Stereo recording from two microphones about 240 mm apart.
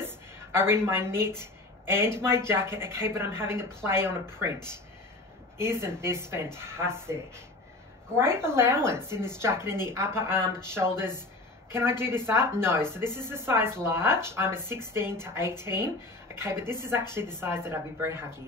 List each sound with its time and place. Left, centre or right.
0.0 s a sound: centre
1.4 s speech: centre
5.6 s speech: centre